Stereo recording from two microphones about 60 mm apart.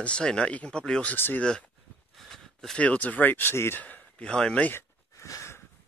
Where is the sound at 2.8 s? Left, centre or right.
Left.